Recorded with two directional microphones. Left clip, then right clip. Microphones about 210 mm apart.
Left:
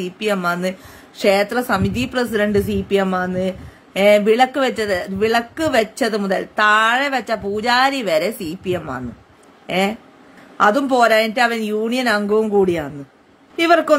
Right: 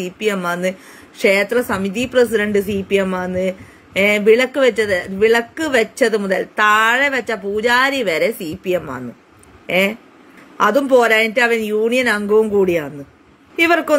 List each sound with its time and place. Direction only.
0.0 s a woman's voice: 15° left (ahead or behind)
10.6 s a woman's voice: 15° left (ahead or behind)